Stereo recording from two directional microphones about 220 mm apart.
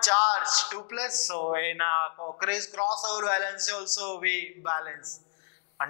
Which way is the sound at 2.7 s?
25° left (ahead or behind).